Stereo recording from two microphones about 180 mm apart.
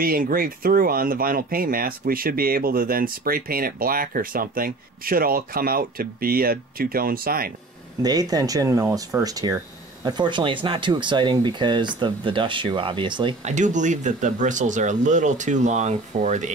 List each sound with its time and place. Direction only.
0.0 s speech: 55° right (ahead or behind)
8.0 s speech: 20° right (ahead or behind)
13.5 s speech: 45° right (ahead or behind)